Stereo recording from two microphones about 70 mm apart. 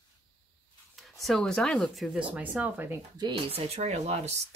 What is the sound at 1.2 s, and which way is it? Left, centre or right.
Speech, centre.